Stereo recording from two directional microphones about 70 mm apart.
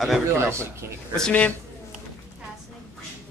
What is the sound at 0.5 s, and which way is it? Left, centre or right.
Speech, right.